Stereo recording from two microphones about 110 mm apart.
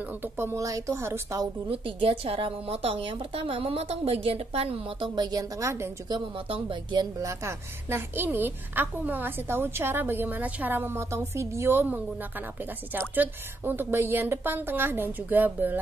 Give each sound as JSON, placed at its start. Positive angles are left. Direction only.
{"t": 0.2, "sound": "a woman's voice", "side_deg": -20}
{"t": 1.7, "sound": "speech", "side_deg": -55}
{"t": 6.0, "sound": "speech", "side_deg": -50}
{"t": 7.2, "sound": "a woman's voice", "side_deg": -25}